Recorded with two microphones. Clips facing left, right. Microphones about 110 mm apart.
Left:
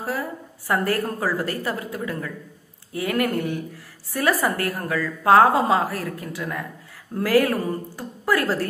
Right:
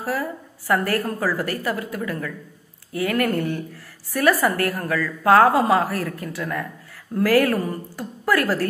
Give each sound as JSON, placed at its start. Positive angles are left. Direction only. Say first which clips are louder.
{"t": 0.0, "sound": "a woman's voice", "louder": "right 2 dB", "side_deg": 20}